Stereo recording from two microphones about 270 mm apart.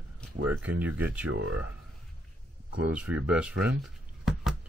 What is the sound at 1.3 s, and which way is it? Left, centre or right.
Speech, right.